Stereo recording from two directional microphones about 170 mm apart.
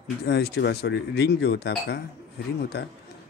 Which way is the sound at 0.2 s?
75° left (ahead or behind).